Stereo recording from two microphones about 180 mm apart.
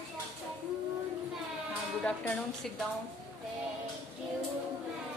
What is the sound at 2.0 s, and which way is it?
Speech, 5° left (ahead or behind).